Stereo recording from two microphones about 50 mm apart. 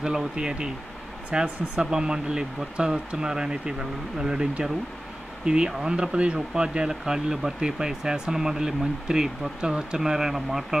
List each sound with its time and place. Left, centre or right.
0.0 s speech: centre